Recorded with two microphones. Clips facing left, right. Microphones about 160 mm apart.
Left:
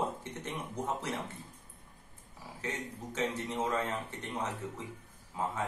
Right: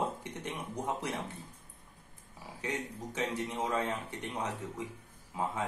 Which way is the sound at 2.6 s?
15° right (ahead or behind).